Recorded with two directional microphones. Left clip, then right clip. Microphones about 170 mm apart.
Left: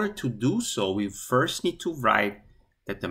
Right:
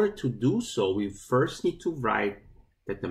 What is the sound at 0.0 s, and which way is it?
Speech, 20° left (ahead or behind).